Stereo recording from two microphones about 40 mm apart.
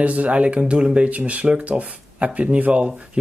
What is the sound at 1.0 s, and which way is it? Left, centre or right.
Speech, right.